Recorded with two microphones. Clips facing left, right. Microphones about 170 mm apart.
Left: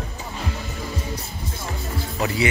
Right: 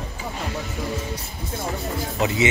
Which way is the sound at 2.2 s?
20° right (ahead or behind).